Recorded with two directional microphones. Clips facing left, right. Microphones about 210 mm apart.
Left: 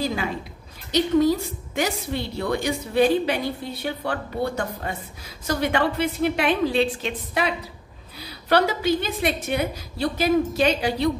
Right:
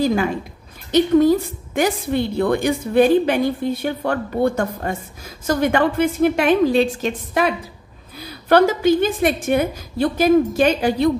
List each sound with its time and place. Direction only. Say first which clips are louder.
0.0 s a woman's voice: right 8 dB; 50° right (ahead or behind)
1.8 s a woman's voice: right 7 dB; 55° right (ahead or behind)